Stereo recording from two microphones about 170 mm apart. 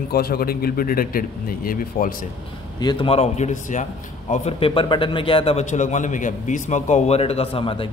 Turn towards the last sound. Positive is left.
turn(degrees=30)  # may be behind; listen again after turning